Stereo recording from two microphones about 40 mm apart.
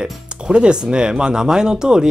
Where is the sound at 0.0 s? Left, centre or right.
Right.